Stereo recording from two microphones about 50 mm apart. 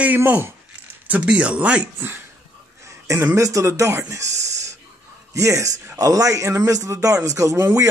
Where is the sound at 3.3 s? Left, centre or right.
Right.